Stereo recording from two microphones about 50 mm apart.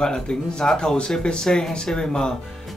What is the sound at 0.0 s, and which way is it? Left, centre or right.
Speech, centre.